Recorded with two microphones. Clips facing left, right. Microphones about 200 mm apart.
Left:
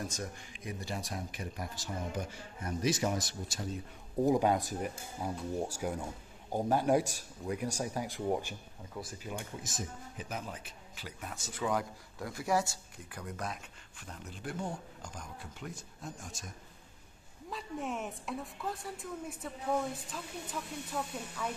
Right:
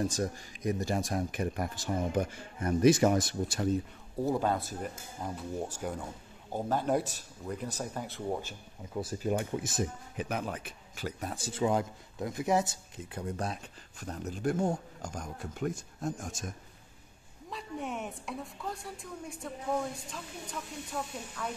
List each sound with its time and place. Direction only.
0.0 s speech: 35° right (ahead or behind); by 3.6 s 55° right (ahead or behind)
4.2 s speech: 15° left (ahead or behind)
9.6 s speech: 65° right (ahead or behind); by 16.4 s 45° right (ahead or behind)
17.5 s speech: centre (ahead or behind)